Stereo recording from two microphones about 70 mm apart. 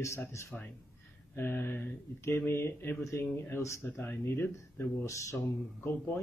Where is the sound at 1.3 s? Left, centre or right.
Left.